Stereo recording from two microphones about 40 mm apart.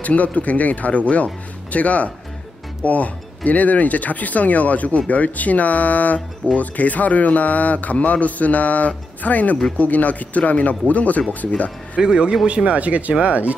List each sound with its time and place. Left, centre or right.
0.0 s speech: left
12.0 s a man's voice: right
12.4 s speech: right